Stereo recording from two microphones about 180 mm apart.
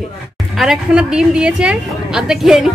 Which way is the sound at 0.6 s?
5° right (ahead or behind).